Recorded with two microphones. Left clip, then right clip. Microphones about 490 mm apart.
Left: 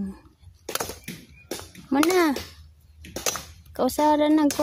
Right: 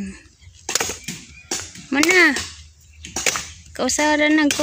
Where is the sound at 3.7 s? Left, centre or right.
Left.